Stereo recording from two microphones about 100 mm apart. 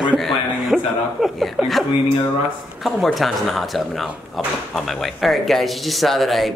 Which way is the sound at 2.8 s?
Centre (ahead or behind).